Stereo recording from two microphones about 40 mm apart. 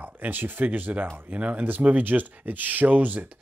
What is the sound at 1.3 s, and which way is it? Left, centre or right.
Speech, right.